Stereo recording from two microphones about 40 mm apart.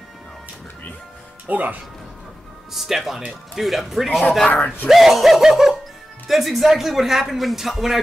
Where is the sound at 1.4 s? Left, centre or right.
Right.